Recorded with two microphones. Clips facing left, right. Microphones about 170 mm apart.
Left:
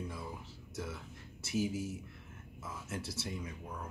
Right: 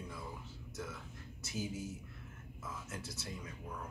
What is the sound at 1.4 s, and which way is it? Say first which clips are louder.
Speech: left 7 dB; 70° left (ahead or behind).